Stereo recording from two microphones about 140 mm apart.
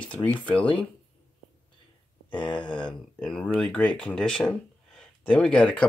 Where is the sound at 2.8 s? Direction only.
5° left (ahead or behind).